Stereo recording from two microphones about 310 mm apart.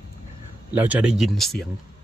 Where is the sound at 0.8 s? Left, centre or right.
Centre.